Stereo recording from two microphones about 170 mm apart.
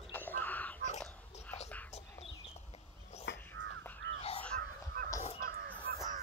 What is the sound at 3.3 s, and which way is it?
Crow, 90° left.